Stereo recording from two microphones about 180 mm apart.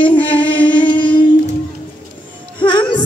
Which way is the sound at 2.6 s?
25° left (ahead or behind).